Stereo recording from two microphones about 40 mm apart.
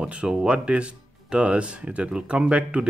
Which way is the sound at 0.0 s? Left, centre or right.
Right.